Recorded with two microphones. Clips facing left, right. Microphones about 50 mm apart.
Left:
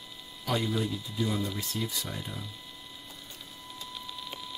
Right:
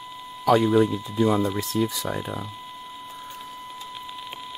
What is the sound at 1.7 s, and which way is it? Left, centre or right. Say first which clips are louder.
Speech: right 10 dB; right.